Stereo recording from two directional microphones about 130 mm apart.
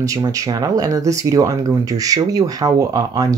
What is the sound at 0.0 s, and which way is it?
Speech, 25° right (ahead or behind).